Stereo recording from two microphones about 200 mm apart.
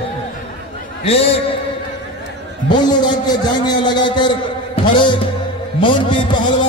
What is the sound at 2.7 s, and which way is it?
A man's voice, 20° left (ahead or behind).